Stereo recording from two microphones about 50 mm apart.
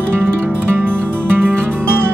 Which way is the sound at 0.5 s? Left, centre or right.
Right.